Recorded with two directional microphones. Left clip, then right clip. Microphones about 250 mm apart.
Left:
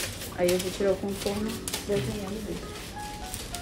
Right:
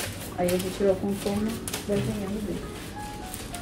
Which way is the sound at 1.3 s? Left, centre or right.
Centre.